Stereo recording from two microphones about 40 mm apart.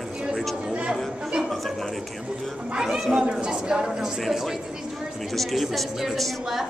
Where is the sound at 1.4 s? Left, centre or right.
Centre.